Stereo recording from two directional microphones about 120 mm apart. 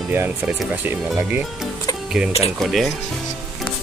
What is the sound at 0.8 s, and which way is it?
Speech, 15° right (ahead or behind).